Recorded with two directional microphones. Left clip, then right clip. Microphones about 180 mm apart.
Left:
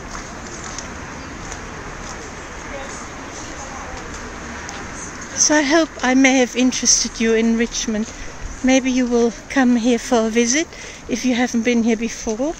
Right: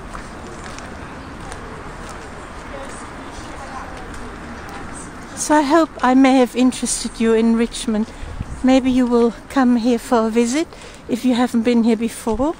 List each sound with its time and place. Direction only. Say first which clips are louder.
5.6 s speech: right 2 dB; 5° right (ahead or behind)
12.3 s speech: right 3 dB; 25° right (ahead or behind)